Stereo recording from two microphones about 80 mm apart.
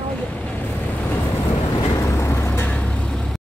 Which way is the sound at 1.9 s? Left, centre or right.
Left.